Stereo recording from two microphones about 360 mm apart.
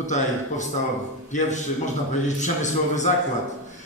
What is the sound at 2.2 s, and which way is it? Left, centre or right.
Speech, centre.